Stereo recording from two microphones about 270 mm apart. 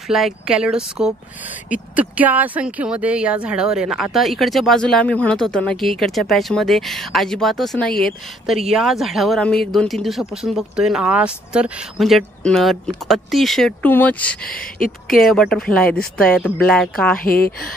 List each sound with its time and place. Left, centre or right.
0.1 s speech: centre
14.4 s speech: left
15.2 s speech: centre
17.2 s speech: left